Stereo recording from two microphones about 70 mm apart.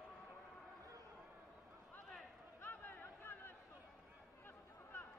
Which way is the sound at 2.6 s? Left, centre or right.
Left.